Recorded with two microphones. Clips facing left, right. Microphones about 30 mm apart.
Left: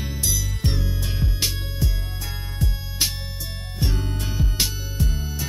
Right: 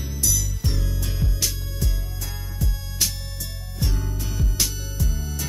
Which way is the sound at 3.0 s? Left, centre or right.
Left.